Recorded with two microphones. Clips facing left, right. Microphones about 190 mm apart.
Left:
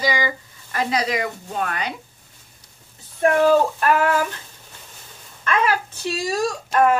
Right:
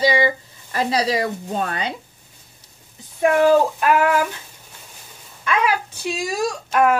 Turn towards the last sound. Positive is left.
turn(degrees=-10)  # may be behind; listen again after turning